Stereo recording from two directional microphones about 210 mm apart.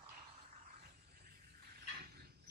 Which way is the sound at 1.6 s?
45° right (ahead or behind).